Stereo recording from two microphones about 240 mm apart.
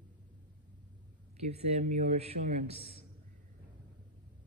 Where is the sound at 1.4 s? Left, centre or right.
Right.